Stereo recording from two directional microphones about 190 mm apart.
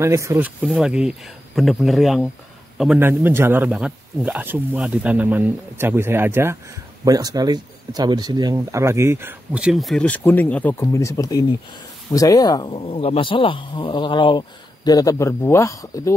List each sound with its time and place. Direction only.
0.0 s speech: 15° right (ahead or behind); by 16.2 s 15° left (ahead or behind)